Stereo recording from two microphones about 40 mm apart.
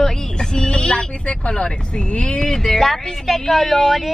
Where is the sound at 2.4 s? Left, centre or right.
Centre.